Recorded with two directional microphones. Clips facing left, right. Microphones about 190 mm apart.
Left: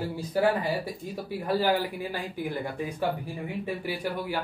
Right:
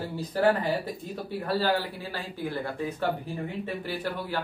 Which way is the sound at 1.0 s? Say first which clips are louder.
Left 1 dB; 10° left (ahead or behind).